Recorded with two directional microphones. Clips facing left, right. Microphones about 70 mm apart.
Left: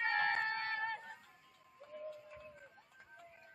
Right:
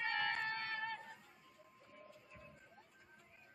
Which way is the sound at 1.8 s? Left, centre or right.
Left.